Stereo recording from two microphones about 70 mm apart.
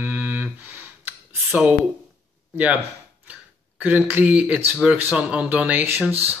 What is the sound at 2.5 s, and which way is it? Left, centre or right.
Speech, centre.